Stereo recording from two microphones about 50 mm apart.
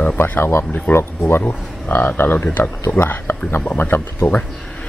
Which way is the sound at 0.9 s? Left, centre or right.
Left.